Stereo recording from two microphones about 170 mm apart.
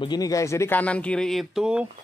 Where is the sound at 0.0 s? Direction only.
25° left (ahead or behind).